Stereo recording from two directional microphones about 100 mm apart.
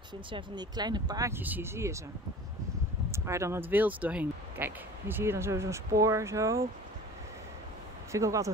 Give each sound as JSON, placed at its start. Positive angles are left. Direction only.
{"t": 0.3, "sound": "speech", "side_deg": -45}
{"t": 1.3, "sound": "speech", "side_deg": -20}
{"t": 3.1, "sound": "speech", "side_deg": -30}
{"t": 8.1, "sound": "speech", "side_deg": -30}